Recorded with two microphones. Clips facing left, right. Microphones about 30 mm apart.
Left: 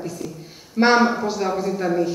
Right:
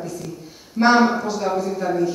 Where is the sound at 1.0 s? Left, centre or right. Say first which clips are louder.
Right 1 dB; centre.